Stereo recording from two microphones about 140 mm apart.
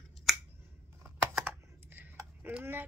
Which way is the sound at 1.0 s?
10° right (ahead or behind).